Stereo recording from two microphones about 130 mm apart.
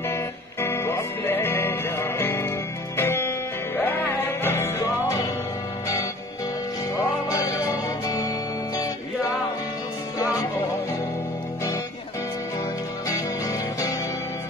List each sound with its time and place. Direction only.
0.1 s music: 20° left (ahead or behind)
7.2 s music: 25° left (ahead or behind)
13.1 s music: 25° left (ahead or behind)